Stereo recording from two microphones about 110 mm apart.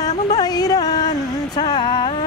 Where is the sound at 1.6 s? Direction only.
40° left (ahead or behind).